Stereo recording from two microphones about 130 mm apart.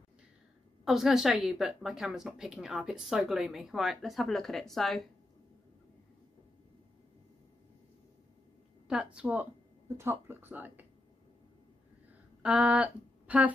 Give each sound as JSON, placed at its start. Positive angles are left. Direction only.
{"t": 0.8, "sound": "speech", "side_deg": 0}
{"t": 8.8, "sound": "speech", "side_deg": -10}
{"t": 12.4, "sound": "a sound", "side_deg": -10}